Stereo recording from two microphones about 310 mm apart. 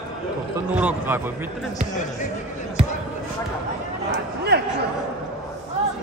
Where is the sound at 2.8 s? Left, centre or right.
Centre.